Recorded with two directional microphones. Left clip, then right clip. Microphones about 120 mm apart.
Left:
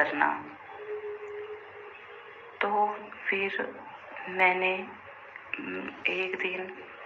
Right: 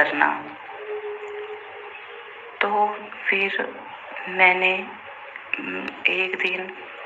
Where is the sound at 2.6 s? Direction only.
30° right (ahead or behind).